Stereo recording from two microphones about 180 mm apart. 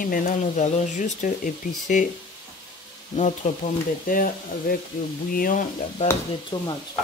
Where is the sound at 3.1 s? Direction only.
40° left (ahead or behind).